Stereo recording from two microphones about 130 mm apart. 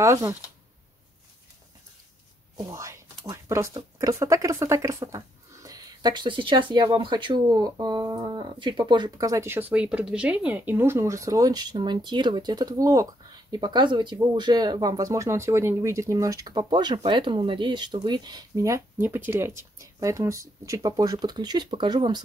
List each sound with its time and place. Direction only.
0.0 s speech: 25° right (ahead or behind)
2.5 s speech: 25° right (ahead or behind)